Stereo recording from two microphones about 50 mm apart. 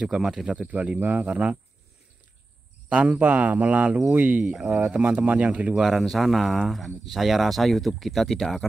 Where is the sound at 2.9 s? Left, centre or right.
Right.